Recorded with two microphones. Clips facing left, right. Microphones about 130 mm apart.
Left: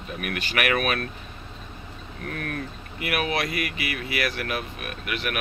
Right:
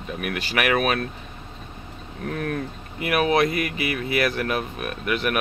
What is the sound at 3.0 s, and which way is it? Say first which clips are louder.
Speech: right 6 dB; 30° right (ahead or behind).